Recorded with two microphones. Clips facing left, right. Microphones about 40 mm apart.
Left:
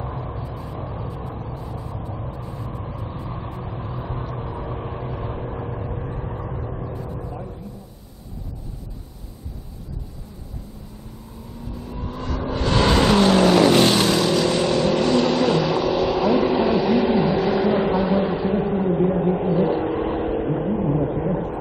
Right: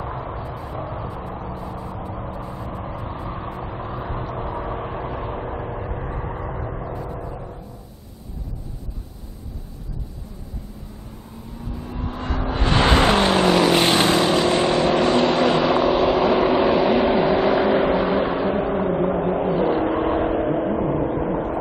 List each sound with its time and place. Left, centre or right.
0.6 s vehicle: centre
7.2 s a sound: centre
12.0 s vehicle: right